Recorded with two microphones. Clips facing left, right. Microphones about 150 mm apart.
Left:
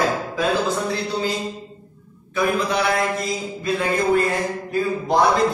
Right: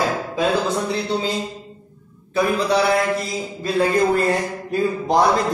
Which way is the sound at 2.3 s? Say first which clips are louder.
Right 2 dB; 35° right (ahead or behind).